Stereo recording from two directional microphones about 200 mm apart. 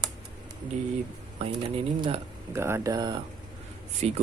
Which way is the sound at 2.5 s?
15° right (ahead or behind).